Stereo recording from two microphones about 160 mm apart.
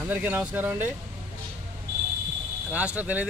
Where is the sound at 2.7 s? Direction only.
10° right (ahead or behind).